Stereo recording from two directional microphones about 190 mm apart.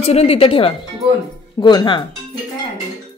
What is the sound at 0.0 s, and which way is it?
Speech, 35° left (ahead or behind).